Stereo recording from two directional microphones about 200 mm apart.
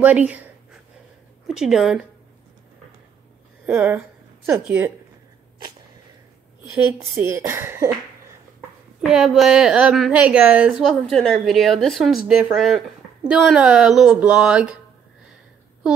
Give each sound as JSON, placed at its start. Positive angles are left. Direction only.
{"t": 0.0, "sound": "speech", "side_deg": -5}
{"t": 1.5, "sound": "a woman's voice", "side_deg": 0}
{"t": 3.6, "sound": "speech", "side_deg": -5}
{"t": 6.7, "sound": "speech", "side_deg": -10}
{"t": 9.0, "sound": "a woman's voice", "side_deg": -5}